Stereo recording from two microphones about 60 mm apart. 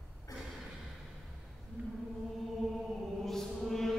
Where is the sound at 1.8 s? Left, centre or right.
Right.